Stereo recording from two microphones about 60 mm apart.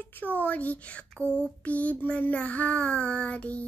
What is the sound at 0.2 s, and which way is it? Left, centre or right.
Child singing, left.